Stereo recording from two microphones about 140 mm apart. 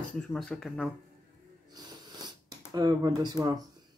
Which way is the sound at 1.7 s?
30° right (ahead or behind).